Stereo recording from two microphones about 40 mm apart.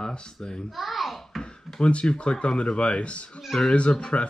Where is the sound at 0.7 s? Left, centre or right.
Centre.